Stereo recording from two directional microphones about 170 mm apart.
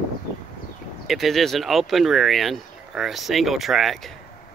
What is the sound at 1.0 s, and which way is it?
Speech, centre (ahead or behind).